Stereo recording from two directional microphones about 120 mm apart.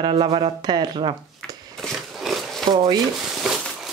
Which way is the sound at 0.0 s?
50° right (ahead or behind).